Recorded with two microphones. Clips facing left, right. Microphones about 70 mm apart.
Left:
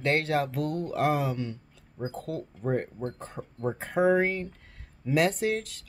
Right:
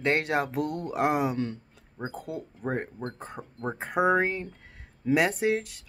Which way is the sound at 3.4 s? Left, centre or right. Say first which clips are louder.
Left 2 dB; centre.